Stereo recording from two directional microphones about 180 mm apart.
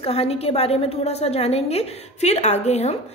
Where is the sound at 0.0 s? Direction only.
35° left (ahead or behind).